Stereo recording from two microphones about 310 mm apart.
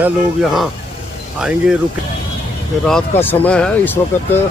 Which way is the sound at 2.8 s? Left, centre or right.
Centre.